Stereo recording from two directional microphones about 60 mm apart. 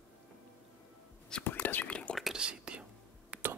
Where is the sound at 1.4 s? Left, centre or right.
Left.